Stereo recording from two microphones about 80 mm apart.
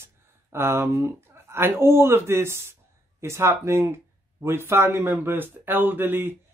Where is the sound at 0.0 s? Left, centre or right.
Right.